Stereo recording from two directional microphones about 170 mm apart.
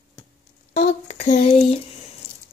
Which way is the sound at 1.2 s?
40° left (ahead or behind).